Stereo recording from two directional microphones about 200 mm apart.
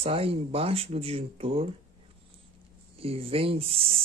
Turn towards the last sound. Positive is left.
turn(degrees=-30)  # may be behind; listen again after turning